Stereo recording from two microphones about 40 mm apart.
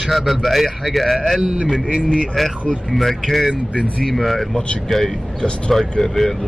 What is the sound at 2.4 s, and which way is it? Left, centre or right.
Speech, centre.